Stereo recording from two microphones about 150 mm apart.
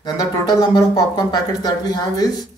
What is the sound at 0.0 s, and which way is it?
Speech, 25° left (ahead or behind).